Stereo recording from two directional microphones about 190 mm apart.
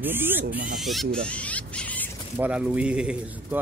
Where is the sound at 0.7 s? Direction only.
Centre (ahead or behind).